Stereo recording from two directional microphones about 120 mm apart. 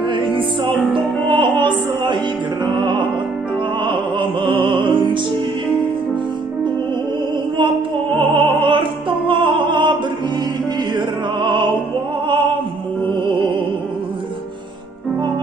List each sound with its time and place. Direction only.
0.9 s music: 40° right (ahead or behind)
8.2 s opera: 45° right (ahead or behind)
9.3 s music: 45° right (ahead or behind)
11.0 s music: 40° right (ahead or behind)